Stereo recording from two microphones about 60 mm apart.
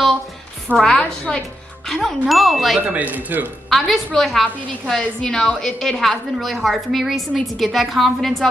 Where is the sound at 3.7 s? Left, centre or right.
Centre.